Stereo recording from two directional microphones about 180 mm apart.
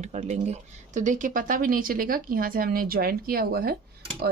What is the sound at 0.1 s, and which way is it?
Speech, 40° right (ahead or behind).